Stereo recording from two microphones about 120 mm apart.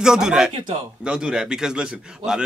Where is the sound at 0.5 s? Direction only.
45° right (ahead or behind).